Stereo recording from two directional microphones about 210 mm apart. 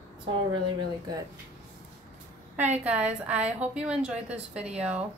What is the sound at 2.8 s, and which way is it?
A woman's voice, 5° right (ahead or behind).